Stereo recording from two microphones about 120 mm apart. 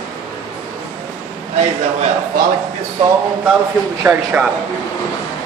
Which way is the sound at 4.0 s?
10° right (ahead or behind).